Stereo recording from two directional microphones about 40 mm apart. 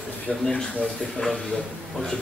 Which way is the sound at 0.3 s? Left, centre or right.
Left.